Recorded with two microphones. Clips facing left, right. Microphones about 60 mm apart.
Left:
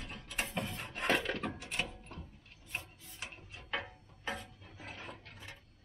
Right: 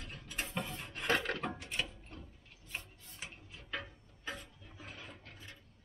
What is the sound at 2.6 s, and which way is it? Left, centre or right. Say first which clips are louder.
Rub: left 2 dB; left.